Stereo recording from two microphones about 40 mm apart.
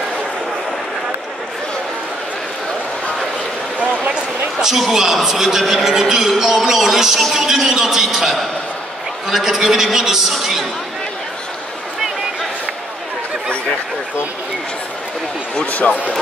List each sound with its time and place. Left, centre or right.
4.6 s a man's voice: centre
15.6 s speech: left